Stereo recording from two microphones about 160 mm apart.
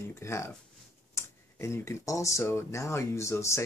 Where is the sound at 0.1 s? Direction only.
20° left (ahead or behind).